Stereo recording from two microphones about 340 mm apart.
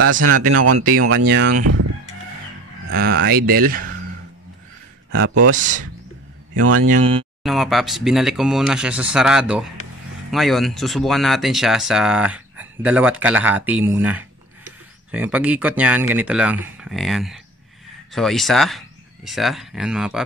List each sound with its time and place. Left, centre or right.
0.0 s speech: right
2.9 s speech: right
6.5 s speech: right
7.4 s speech: centre